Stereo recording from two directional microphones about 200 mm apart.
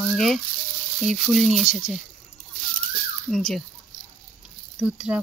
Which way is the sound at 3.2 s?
Centre (ahead or behind).